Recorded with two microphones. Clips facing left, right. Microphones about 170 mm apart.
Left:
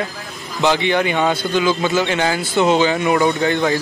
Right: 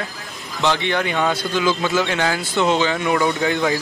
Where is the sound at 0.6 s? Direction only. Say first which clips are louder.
Left 4 dB; 5° left (ahead or behind).